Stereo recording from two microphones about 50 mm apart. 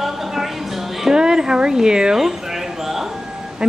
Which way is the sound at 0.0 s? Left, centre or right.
Centre.